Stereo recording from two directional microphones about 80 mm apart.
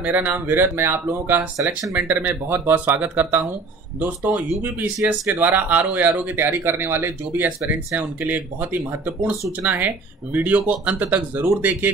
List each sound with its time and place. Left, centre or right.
0.0 s speech: right